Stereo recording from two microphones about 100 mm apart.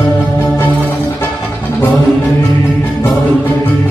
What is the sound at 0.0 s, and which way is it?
Music, 15° left (ahead or behind).